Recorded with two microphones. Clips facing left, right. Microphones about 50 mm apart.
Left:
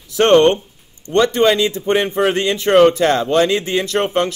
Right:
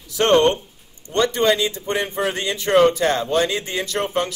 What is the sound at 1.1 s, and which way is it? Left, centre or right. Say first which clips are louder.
A man's voice: left 4 dB; left.